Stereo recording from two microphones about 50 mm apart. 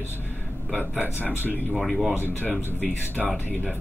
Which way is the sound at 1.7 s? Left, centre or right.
Centre.